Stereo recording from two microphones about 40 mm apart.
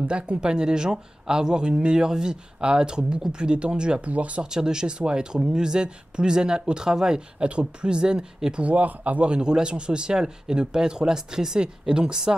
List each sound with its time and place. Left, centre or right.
0.1 s speech: right
8.6 s speech: right; by 12.4 s centre